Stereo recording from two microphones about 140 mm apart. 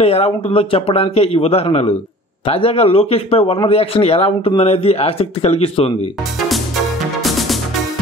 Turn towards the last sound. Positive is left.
turn(degrees=0)  # may be behind; listen again after turning